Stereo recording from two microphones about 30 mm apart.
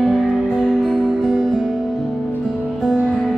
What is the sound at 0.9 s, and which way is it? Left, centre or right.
Music, right.